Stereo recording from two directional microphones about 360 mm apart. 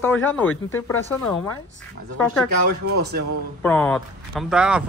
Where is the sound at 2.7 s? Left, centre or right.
Right.